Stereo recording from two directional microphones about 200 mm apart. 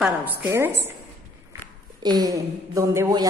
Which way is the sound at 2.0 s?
20° right (ahead or behind).